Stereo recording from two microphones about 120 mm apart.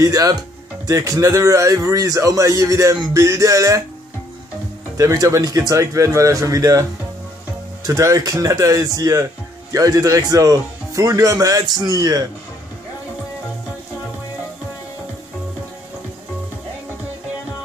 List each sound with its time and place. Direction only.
0.0 s speech: 30° right (ahead or behind)
4.9 s speech: 30° right (ahead or behind)